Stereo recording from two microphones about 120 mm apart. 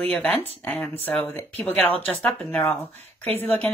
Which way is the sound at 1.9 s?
15° left (ahead or behind).